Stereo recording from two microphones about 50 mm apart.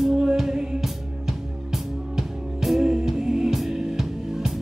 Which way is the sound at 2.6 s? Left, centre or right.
Centre.